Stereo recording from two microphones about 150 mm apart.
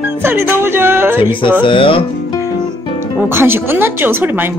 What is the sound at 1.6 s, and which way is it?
Speech, 35° left (ahead or behind).